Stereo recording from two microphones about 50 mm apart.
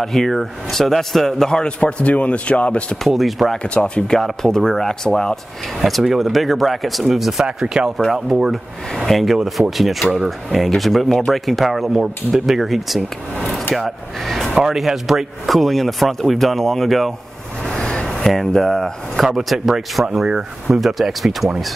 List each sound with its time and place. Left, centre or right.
0.0 s a man's voice: centre; by 3.0 s left
3.0 s speech: centre
3.6 s speech: left
4.2 s a man's voice: centre
5.8 s speech: centre
7.4 s speech: centre
8.9 s speech: centre
14.5 s speech: centre
17.6 s a sound: centre
19.2 s speech: centre
20.2 s speech: centre
20.7 s speech: centre